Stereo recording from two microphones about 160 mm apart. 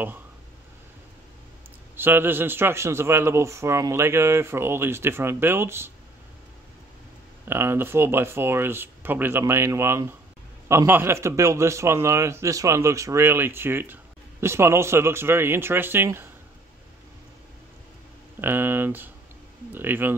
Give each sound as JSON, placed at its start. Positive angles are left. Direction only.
{"t": 2.0, "sound": "a man's voice", "side_deg": -15}
{"t": 7.4, "sound": "a man's voice", "side_deg": -15}
{"t": 18.4, "sound": "a man's voice", "side_deg": -15}